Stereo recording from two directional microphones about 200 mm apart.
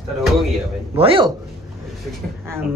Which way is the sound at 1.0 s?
25° right (ahead or behind).